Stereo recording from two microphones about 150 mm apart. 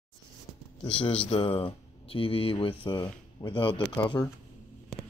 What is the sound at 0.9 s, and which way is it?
Speech, 40° left (ahead or behind).